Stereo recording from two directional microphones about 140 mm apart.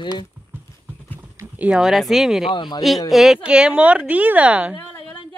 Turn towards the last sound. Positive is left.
turn(degrees=-10)  # may be behind; listen again after turning